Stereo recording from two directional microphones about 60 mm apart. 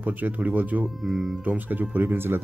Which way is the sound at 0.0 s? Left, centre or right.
Right.